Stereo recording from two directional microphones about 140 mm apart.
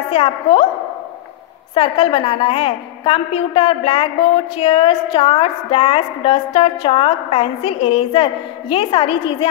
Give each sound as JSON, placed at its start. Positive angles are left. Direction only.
{"t": 0.1, "sound": "a woman's voice", "side_deg": 40}
{"t": 1.8, "sound": "a woman's voice", "side_deg": 40}